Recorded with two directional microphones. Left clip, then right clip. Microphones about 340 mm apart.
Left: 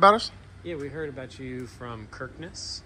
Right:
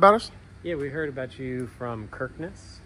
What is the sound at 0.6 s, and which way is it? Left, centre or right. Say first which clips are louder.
Speech: right 4 dB; centre.